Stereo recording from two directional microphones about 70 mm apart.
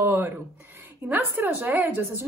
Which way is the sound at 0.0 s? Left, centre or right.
Right.